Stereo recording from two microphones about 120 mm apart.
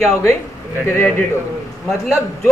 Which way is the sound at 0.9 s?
20° left (ahead or behind).